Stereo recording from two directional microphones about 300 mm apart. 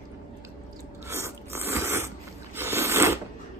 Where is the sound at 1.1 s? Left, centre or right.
Centre.